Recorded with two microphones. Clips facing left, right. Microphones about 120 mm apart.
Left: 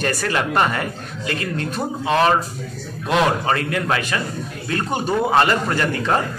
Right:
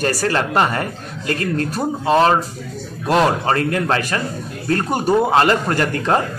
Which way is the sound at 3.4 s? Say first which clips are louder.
Right 3 dB; 35° right (ahead or behind).